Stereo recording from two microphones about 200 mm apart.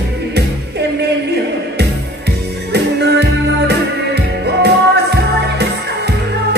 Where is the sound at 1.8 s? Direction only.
55° right (ahead or behind).